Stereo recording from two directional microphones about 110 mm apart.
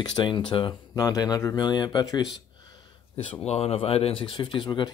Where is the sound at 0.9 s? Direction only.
35° left (ahead or behind).